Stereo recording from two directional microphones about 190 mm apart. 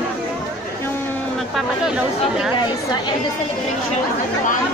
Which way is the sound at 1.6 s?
5° right (ahead or behind).